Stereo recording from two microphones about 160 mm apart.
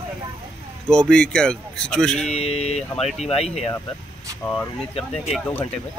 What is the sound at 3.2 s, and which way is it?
Speech, 40° left (ahead or behind).